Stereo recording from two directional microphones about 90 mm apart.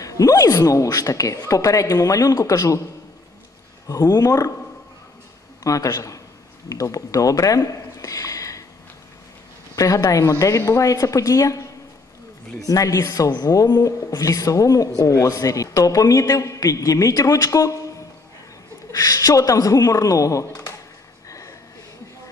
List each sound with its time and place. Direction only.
0.0 s speech: 40° left (ahead or behind)
3.8 s speech: 40° left (ahead or behind)
5.6 s a man's voice: 40° left (ahead or behind)
9.8 s speech: 40° left (ahead or behind)
12.6 s speech: 40° left (ahead or behind)
18.9 s speech: 40° left (ahead or behind)
21.3 s a sound: 35° left (ahead or behind)